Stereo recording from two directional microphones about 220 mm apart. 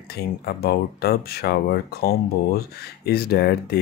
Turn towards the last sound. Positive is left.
turn(degrees=45)  # may be behind; listen again after turning